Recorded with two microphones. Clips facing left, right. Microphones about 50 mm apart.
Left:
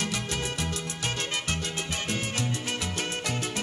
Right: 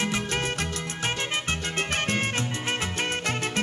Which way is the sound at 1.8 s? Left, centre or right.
Right.